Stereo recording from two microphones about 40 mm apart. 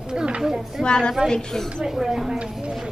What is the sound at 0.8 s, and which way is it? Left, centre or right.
Speech, centre.